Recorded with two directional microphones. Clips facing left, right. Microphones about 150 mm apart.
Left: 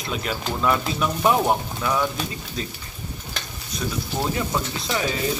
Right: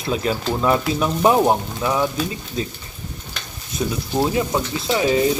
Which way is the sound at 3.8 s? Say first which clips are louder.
Right 6 dB; 25° right (ahead or behind).